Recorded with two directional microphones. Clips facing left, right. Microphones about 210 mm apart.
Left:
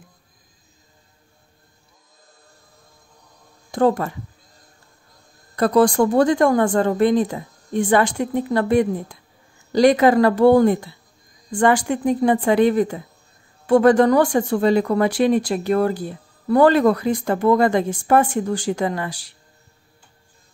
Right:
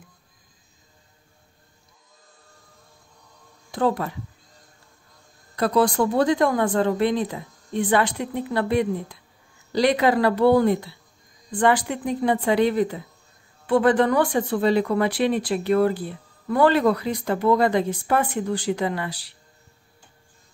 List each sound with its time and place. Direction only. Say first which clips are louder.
3.7 s speech: left 5 dB; 45° left (ahead or behind)
5.6 s speech: left 4 dB; 45° left (ahead or behind)